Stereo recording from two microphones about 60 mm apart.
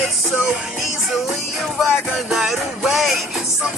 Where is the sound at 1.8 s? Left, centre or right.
Centre.